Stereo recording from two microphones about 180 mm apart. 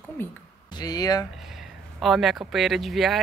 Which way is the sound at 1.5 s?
Centre (ahead or behind).